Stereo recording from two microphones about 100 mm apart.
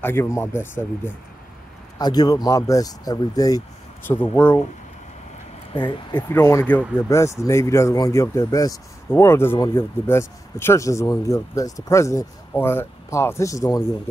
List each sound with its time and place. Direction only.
0.0 s speech: 25° left (ahead or behind)
2.0 s speech: 45° left (ahead or behind)
4.1 s speech: 20° left (ahead or behind)
5.7 s speech: 55° left (ahead or behind)
6.2 s speech: 30° left (ahead or behind)